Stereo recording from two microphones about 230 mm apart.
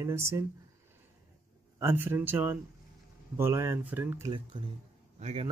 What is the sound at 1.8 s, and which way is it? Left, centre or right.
Speech, centre.